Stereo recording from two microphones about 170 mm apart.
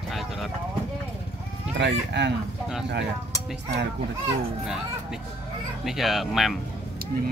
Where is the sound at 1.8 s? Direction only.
90° right.